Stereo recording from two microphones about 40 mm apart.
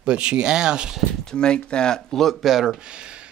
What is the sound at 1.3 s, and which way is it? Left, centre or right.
Speech, left.